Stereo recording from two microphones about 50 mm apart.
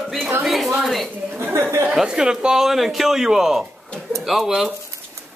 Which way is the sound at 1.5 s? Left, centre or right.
Right.